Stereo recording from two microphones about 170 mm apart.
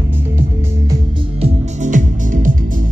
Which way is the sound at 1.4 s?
45° right (ahead or behind).